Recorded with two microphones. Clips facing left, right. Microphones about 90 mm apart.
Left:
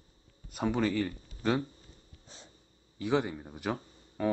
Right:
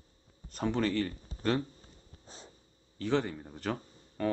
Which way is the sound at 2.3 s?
40° right (ahead or behind).